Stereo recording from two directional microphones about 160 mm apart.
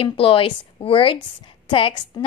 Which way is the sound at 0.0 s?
35° left (ahead or behind).